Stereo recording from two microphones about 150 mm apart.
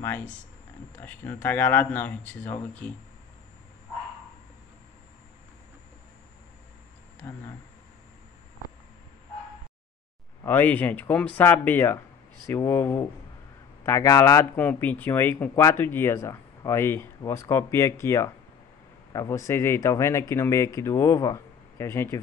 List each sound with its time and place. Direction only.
1.0 s speech: 10° left (ahead or behind)
7.2 s speech: 15° left (ahead or behind)
10.4 s speech: 15° left (ahead or behind)